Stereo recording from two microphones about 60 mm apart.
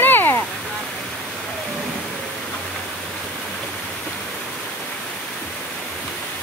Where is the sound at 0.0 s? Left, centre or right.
Left.